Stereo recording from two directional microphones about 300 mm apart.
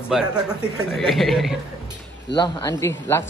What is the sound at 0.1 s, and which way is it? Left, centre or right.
A man's voice, centre.